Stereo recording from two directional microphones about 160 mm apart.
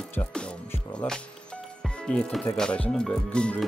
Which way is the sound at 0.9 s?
5° left (ahead or behind).